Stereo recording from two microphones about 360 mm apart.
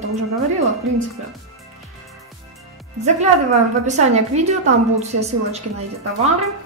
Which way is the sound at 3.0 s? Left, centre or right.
Centre.